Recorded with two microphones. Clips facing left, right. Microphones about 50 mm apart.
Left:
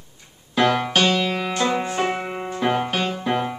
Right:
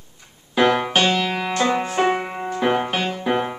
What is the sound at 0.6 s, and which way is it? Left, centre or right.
Music, centre.